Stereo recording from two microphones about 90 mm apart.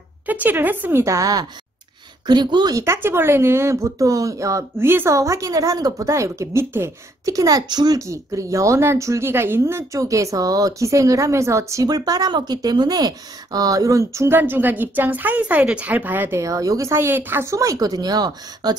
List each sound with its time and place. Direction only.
0.3 s a woman's voice: 20° right (ahead or behind)
1.0 s speech: 35° right (ahead or behind)
2.2 s speech: 55° right (ahead or behind)
2.7 s speech: 30° right (ahead or behind)
7.2 s speech: 40° right (ahead or behind); by 17.5 s 25° right (ahead or behind)
17.5 s speech: 40° right (ahead or behind)